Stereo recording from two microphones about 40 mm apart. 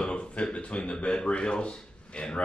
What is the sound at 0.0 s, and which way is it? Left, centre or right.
A man's voice, left.